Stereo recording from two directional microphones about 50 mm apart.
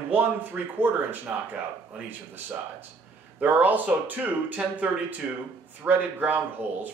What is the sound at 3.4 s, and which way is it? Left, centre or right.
Speech, right.